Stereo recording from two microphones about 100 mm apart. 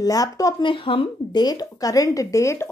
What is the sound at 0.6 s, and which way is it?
Speech, 55° left (ahead or behind).